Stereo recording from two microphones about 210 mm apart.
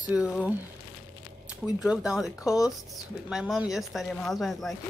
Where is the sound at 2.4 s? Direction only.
15° left (ahead or behind).